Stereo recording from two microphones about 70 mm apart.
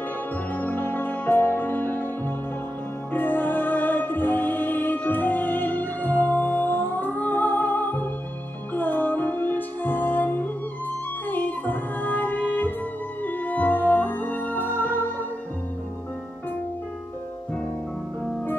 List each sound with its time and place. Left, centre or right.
0.5 s music: left